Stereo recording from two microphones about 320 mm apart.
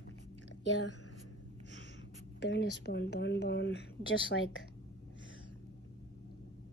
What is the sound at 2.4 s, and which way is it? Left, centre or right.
Speech, left.